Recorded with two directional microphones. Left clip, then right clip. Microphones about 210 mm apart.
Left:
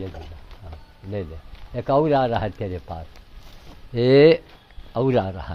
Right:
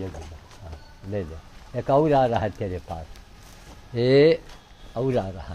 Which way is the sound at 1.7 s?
20° left (ahead or behind).